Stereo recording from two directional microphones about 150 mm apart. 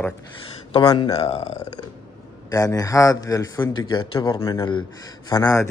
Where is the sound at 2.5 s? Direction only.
25° left (ahead or behind).